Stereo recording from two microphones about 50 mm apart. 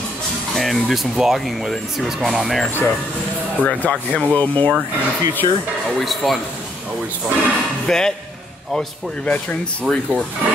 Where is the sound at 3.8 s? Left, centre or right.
Left.